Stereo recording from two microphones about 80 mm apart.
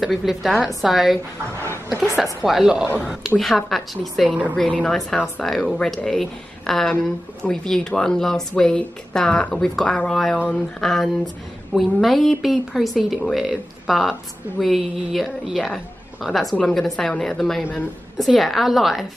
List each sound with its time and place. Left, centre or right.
0.0 s a woman's voice: centre
2.4 s a woman's voice: centre
4.3 s a woman's voice: centre
4.6 s a woman's voice: centre
10.8 s a woman's voice: centre